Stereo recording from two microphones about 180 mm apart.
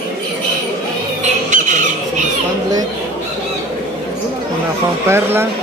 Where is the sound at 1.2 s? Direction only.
45° right (ahead or behind).